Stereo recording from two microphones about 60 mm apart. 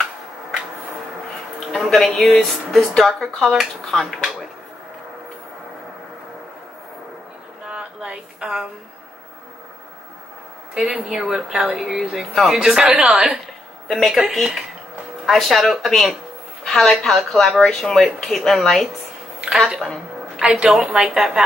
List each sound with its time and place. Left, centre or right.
1.7 s a woman's voice: centre
7.6 s a sound: centre
10.8 s a woman's voice: centre
13.8 s a woman's voice: centre
19.7 s a sound: centre
20.7 s a woman's voice: centre